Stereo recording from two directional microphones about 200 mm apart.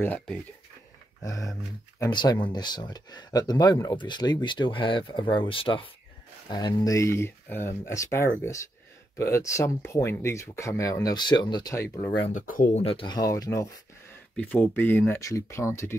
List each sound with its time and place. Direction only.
0.0 s speech: 10° left (ahead or behind)
12.3 s speech: 40° left (ahead or behind); by 16.0 s 15° left (ahead or behind)